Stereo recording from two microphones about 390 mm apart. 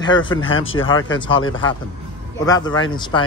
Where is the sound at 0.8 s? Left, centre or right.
Centre.